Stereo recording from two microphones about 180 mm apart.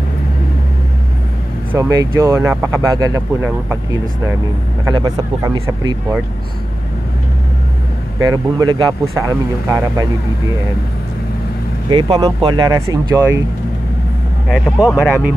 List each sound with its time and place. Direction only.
1.7 s speech: 20° right (ahead or behind)
4.8 s speech: 25° right (ahead or behind)
8.2 s speech: 20° right (ahead or behind)
11.9 s speech: 25° right (ahead or behind)
14.5 s speech: centre (ahead or behind)